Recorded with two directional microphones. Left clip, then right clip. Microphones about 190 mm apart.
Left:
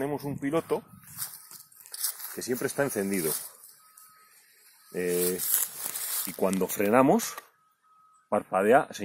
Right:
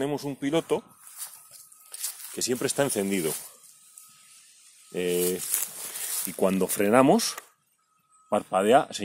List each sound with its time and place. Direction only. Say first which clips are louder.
0.0 s speech: right 2 dB; 5° right (ahead or behind)
1.9 s a sound: left 1 dB; 25° right (ahead or behind)
2.5 s speech: right 2 dB; 10° right (ahead or behind)
4.9 s speech: right 2 dB; 15° right (ahead or behind)
5.5 s a sound: even; 15° right (ahead or behind)
6.6 s speech: right 2 dB; 30° right (ahead or behind)
6.9 s speech: right 2 dB; 15° right (ahead or behind)
8.3 s speech: right 1 dB; 10° right (ahead or behind)